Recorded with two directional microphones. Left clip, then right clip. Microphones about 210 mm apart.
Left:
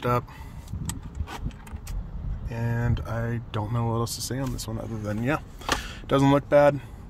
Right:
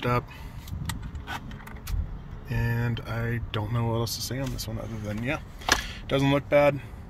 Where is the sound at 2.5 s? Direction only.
15° left (ahead or behind).